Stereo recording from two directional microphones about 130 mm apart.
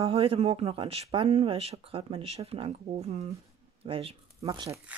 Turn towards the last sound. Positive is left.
turn(degrees=-30)  # may be behind; listen again after turning